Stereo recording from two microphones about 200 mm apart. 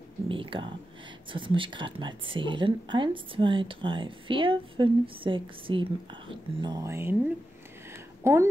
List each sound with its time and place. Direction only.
0.3 s speech: 25° right (ahead or behind)
8.2 s speech: 15° right (ahead or behind)